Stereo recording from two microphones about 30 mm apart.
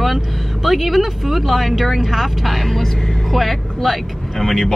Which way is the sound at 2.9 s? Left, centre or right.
Centre.